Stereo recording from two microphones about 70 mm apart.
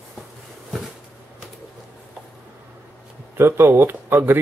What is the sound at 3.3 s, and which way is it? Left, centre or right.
Speech, right.